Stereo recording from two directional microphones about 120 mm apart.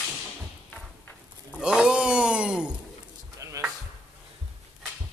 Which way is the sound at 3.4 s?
25° right (ahead or behind).